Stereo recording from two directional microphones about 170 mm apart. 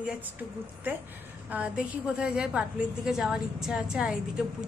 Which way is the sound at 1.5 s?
5° right (ahead or behind).